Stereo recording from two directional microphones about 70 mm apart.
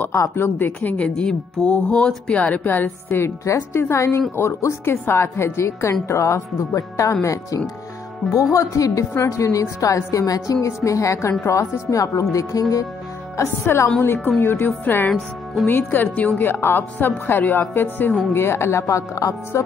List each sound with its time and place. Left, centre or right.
0.4 s a woman's voice: left
9.1 s a woman's voice: left
13.7 s speech: left
15.0 s speech: centre
15.6 s a woman's voice: left